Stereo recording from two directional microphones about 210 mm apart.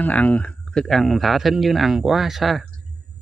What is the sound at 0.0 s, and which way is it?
Speech, 5° left (ahead or behind).